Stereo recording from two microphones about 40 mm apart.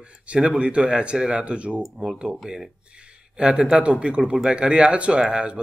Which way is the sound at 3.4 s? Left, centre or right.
Right.